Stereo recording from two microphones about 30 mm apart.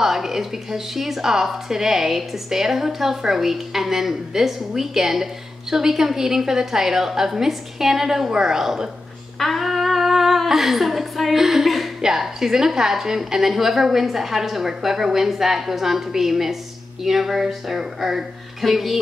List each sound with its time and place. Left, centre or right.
0.0 s a woman's voice: centre
9.4 s humming: centre
10.6 s a woman's voice: centre
11.3 s a sound: centre
12.0 s a woman's voice: centre